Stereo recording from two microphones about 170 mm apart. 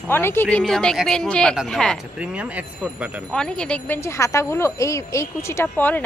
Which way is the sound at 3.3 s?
5° left (ahead or behind).